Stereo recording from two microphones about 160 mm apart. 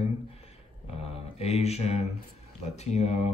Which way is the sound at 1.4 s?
40° left (ahead or behind).